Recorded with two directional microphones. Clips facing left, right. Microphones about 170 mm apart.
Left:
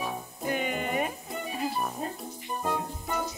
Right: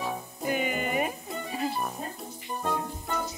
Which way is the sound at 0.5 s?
5° right (ahead or behind).